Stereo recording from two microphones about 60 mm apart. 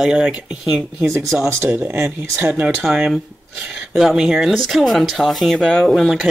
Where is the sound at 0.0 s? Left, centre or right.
Centre.